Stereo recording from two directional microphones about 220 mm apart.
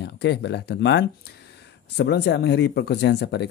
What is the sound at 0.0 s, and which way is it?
Speech, 50° left (ahead or behind).